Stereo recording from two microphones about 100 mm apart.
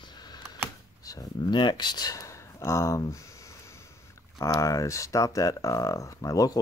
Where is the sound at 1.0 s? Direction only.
40° left (ahead or behind).